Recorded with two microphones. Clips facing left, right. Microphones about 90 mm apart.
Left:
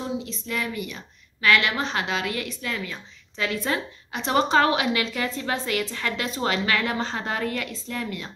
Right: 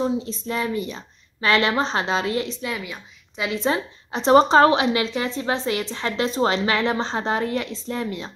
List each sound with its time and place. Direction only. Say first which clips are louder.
0.0 s a woman's voice: right 6 dB; 30° right (ahead or behind)
2.7 s a woman's voice: right 1 dB; 10° right (ahead or behind)